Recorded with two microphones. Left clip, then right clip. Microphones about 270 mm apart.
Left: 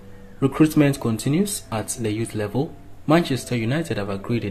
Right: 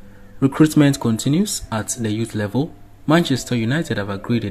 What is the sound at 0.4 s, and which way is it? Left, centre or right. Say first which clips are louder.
Speech: right 3 dB; right.